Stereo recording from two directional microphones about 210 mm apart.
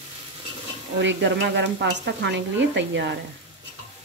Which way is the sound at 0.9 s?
60° right (ahead or behind).